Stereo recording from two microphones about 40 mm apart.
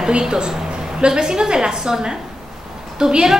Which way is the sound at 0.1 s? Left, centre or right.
Centre.